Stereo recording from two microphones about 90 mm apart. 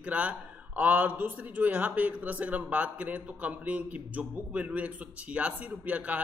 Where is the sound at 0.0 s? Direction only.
15° right (ahead or behind).